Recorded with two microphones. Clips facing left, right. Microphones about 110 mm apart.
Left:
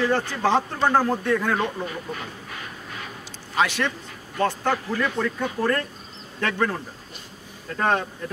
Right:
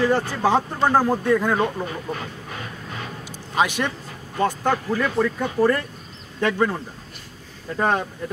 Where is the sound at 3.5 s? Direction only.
15° right (ahead or behind).